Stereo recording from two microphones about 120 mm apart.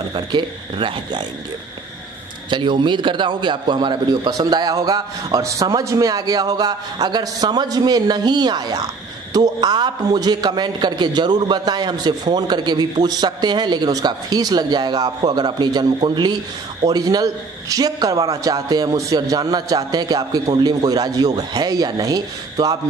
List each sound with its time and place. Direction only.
0.1 s a man's voice: 40° right (ahead or behind)
2.5 s a man's voice: 40° right (ahead or behind)